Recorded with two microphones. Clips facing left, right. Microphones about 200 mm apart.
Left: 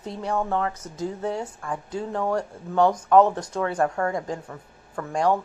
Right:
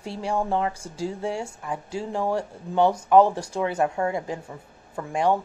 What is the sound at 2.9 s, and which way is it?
A woman's voice, 10° right (ahead or behind).